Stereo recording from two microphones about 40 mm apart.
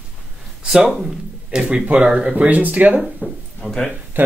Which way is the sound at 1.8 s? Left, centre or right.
Right.